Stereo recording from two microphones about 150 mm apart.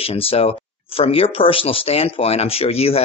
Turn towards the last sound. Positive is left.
turn(degrees=40)  # may be behind; listen again after turning